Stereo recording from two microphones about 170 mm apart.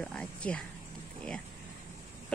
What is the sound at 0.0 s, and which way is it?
Speech, 5° left (ahead or behind).